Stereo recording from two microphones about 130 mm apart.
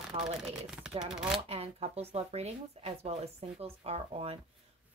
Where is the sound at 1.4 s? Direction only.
50° right (ahead or behind).